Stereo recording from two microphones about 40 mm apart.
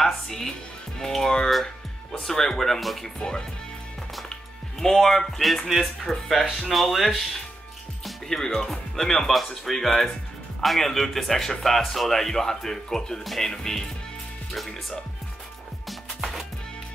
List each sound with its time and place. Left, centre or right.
0.0 s music: centre
0.9 s speech: centre
3.0 s speech: centre
4.3 s music: centre
5.4 s speech: centre
8.3 s speech: centre
15.9 s music: centre